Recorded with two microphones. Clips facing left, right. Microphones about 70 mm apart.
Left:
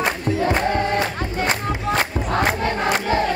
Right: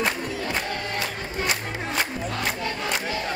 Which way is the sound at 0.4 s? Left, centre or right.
Left.